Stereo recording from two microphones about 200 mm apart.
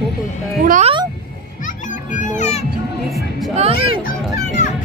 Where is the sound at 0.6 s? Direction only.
40° right (ahead or behind).